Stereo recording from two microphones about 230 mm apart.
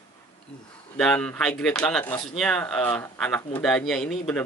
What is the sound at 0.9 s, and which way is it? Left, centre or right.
A man's voice, centre.